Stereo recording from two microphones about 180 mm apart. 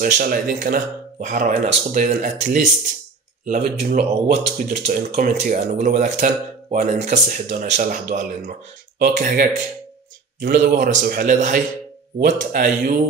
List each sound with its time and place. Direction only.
0.0 s a man's voice: 50° right (ahead or behind)